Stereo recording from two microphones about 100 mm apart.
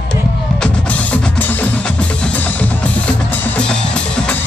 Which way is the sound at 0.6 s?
15° left (ahead or behind).